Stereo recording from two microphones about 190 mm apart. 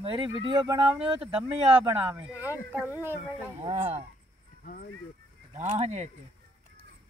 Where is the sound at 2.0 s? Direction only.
10° right (ahead or behind).